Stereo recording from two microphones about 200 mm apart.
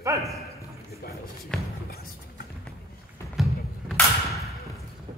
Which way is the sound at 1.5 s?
5° left (ahead or behind).